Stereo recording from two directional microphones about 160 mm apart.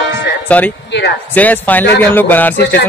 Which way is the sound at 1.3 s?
10° left (ahead or behind).